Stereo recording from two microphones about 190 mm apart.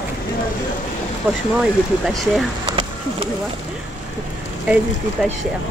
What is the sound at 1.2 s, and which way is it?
A woman's voice, 10° right (ahead or behind).